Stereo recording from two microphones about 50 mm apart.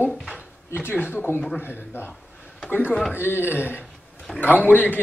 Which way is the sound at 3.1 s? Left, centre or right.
Left.